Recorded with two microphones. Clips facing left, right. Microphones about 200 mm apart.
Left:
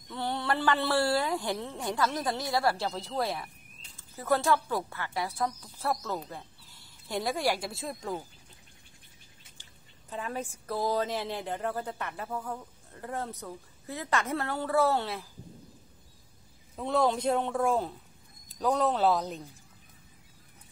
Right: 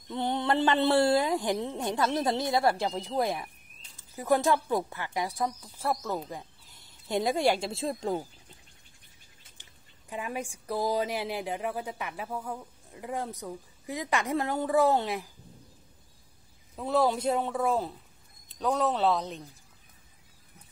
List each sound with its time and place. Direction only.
0.1 s speech: 20° right (ahead or behind)
9.6 s speech: 15° right (ahead or behind)
16.7 s speech: centre (ahead or behind)